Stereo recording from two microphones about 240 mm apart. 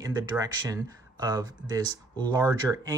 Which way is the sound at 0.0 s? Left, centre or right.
Centre.